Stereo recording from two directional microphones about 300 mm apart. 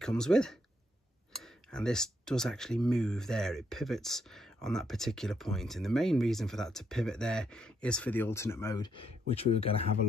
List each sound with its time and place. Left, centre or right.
0.0 s speech: centre